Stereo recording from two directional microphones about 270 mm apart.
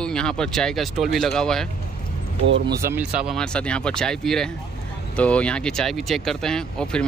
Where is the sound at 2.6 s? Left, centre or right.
Centre.